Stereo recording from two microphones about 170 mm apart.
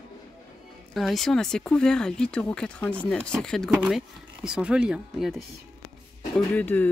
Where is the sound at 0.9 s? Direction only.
Centre (ahead or behind).